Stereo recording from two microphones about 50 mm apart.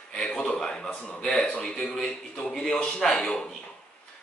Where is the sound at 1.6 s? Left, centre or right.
Centre.